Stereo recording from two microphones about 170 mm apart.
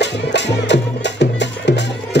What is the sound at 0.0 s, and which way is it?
Music, 90° left.